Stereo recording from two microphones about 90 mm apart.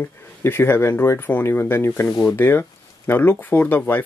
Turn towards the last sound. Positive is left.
turn(degrees=20)  # may be behind; listen again after turning